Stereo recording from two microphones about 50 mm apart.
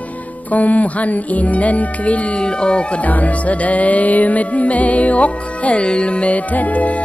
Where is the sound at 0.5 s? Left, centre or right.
Left.